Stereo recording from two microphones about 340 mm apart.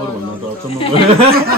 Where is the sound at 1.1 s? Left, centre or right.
Right.